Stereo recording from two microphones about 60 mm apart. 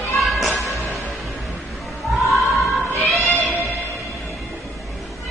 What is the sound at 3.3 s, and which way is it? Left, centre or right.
Music, right.